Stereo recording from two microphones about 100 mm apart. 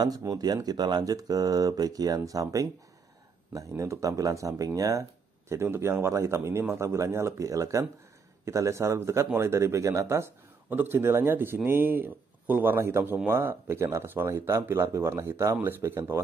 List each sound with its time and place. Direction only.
0.0 s speech: 40° right (ahead or behind)